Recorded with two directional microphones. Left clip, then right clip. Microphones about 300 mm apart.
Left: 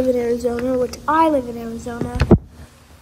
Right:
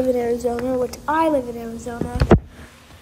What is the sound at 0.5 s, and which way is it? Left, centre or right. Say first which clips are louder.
Speech: left 2 dB; left.